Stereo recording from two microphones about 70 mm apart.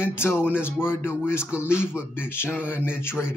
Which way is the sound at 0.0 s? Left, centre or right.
Left.